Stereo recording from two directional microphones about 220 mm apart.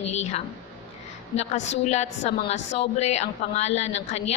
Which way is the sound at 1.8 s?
30° left (ahead or behind).